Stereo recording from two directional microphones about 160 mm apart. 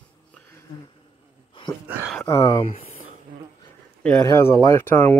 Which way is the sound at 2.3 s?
30° left (ahead or behind).